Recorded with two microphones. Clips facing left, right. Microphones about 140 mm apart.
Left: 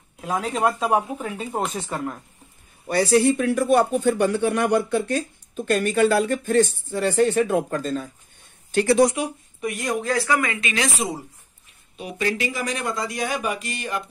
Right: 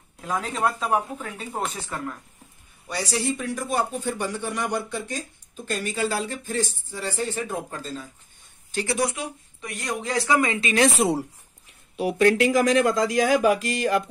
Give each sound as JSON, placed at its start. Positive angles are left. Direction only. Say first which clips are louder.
{"t": 0.4, "sound": "speech", "louder": "left 4 dB", "side_deg": 15}
{"t": 2.9, "sound": "speech", "louder": "left 9 dB", "side_deg": 55}
{"t": 8.9, "sound": "speech", "louder": "left 8 dB", "side_deg": 20}
{"t": 10.0, "sound": "speech", "louder": "right 2 dB", "side_deg": -20}
{"t": 11.0, "sound": "speech", "louder": "right 5 dB", "side_deg": -75}
{"t": 12.0, "sound": "speech", "louder": "right 7 dB", "side_deg": -85}